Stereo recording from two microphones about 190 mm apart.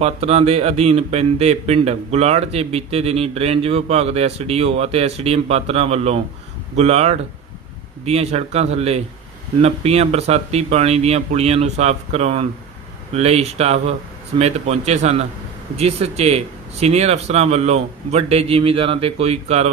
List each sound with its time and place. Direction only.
0.0 s speech: 35° right (ahead or behind)